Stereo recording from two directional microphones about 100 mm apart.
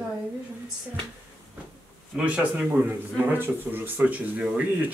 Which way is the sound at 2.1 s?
10° right (ahead or behind).